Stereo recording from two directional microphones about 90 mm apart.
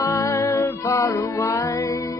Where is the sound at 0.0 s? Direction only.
45° left (ahead or behind).